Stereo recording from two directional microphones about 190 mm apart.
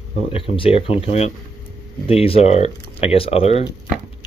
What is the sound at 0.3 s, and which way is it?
Speech, 30° left (ahead or behind).